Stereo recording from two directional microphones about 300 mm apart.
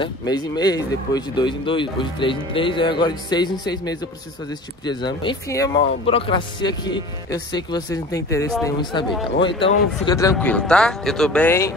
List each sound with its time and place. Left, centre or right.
0.0 s speech: centre